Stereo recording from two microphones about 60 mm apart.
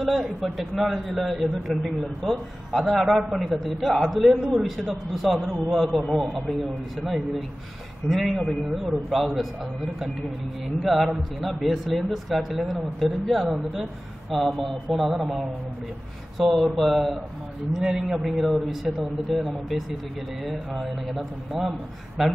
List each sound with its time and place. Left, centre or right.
0.0 s a man's voice: centre
10.8 s a man's voice: centre